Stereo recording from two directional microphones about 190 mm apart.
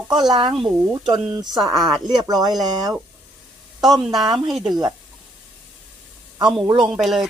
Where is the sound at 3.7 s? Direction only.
Centre (ahead or behind).